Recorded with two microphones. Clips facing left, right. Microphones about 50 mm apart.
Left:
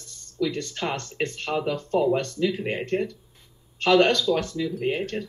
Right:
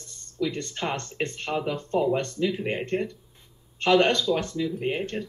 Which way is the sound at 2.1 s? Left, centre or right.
Right.